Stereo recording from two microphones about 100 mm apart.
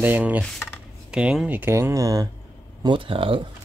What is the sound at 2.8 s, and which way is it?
Speech, 60° right (ahead or behind).